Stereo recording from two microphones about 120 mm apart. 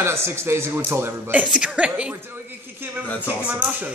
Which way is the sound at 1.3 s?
10° right (ahead or behind).